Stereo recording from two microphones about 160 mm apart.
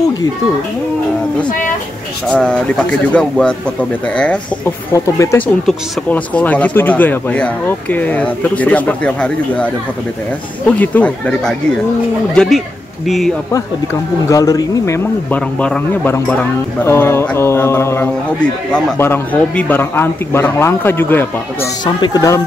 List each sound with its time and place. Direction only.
2.2 s speech: 5° left (ahead or behind)
4.9 s speech: 20° left (ahead or behind)
5.7 s speech: 10° left (ahead or behind)
10.8 s speech: 10° left (ahead or behind)
14.3 s speech: 20° left (ahead or behind)
15.3 s speech: 10° left (ahead or behind)
21.8 s speech: 25° left (ahead or behind)